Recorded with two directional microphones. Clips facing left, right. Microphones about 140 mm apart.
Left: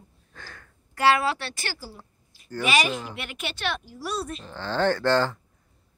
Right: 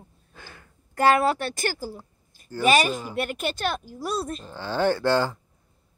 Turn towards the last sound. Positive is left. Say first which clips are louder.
# even
turn(degrees=-10)  # may be behind; listen again after turning